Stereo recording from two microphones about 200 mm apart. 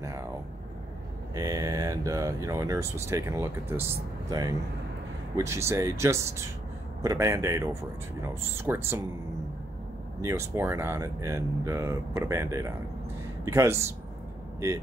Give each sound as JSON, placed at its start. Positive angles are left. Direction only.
{"t": 1.3, "sound": "speech", "side_deg": -20}
{"t": 10.2, "sound": "speech", "side_deg": -15}